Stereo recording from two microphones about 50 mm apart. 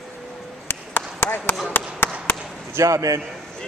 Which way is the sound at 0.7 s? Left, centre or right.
Left.